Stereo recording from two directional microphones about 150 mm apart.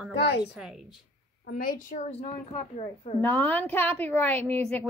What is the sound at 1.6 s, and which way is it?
A woman's voice, 65° left (ahead or behind).